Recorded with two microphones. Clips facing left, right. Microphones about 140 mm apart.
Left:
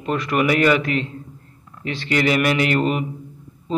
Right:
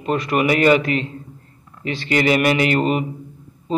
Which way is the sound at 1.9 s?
35° right (ahead or behind).